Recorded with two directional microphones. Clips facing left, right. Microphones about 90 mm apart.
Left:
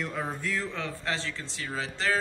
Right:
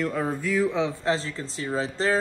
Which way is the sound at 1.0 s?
35° right (ahead or behind).